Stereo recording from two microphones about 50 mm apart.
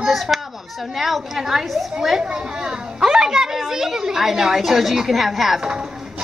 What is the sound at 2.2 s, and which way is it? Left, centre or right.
A child's voice, centre.